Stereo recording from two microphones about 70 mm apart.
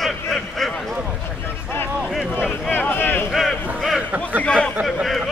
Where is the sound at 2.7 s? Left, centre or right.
Left.